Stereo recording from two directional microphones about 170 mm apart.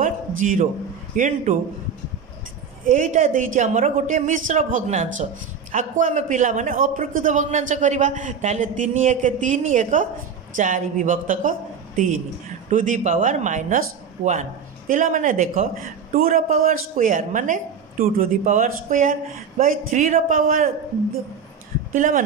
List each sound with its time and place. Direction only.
0.0 s a sound: 50° right (ahead or behind)
1.1 s speech: 50° right (ahead or behind)
2.8 s a man's voice: 50° right (ahead or behind)
21.9 s speech: 50° right (ahead or behind)